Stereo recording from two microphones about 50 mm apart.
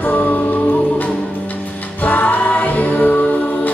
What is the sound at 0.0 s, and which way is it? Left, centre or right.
Music, left.